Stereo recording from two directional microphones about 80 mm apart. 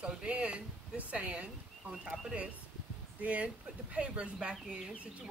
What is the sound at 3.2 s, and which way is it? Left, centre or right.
Speech, centre.